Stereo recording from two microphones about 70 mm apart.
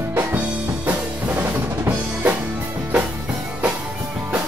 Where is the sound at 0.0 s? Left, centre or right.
Right.